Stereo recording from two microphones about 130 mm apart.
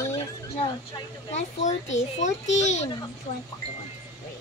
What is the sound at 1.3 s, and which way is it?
A child's voice, 65° left (ahead or behind).